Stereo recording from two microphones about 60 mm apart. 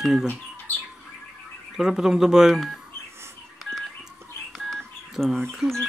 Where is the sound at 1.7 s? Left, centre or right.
Centre.